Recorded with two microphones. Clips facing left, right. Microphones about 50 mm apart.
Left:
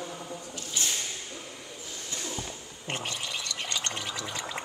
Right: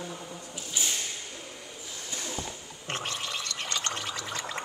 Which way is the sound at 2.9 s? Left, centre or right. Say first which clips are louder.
Even; centre.